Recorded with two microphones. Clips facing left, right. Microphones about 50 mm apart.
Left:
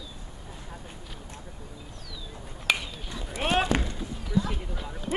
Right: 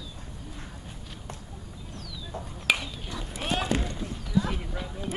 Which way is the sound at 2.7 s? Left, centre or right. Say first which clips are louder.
Right 1 dB; centre.